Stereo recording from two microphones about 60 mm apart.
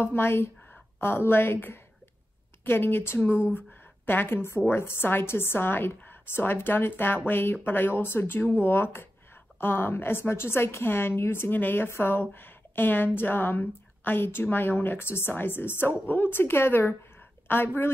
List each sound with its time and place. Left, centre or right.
0.0 s a woman's voice: left